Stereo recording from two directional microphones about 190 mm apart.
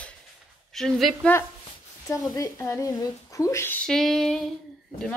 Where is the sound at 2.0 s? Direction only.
20° left (ahead or behind).